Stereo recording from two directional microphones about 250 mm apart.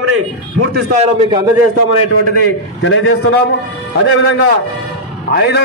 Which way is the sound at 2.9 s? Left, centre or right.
Left.